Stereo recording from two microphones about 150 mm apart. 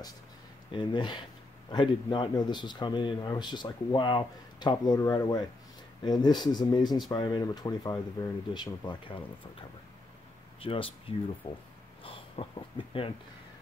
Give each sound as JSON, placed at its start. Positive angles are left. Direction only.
{"t": 0.7, "sound": "speech", "side_deg": 30}